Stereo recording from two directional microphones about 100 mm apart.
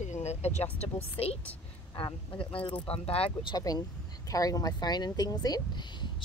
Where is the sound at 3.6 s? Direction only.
40° left (ahead or behind).